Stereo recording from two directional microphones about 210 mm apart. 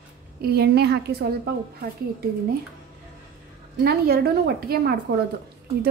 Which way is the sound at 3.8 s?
45° right (ahead or behind).